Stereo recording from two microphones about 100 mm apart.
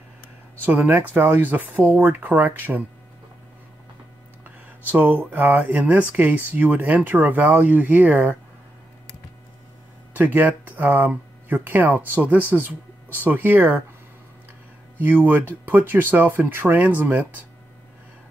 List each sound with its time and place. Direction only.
0.7 s speech: 20° right (ahead or behind)
4.8 s speech: 20° right (ahead or behind)
10.1 s speech: 15° right (ahead or behind)
15.0 s speech: 20° right (ahead or behind)